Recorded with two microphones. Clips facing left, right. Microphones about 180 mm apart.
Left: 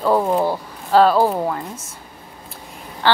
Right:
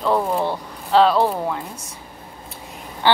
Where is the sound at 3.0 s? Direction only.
15° right (ahead or behind).